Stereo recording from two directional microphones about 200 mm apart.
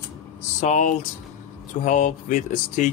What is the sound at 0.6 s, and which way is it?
Speech, 35° left (ahead or behind).